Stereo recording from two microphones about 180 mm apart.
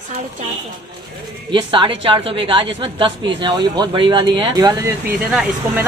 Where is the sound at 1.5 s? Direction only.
25° right (ahead or behind).